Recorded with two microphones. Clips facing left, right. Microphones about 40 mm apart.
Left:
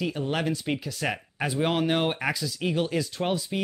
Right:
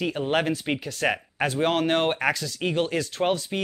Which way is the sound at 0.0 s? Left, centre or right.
Right.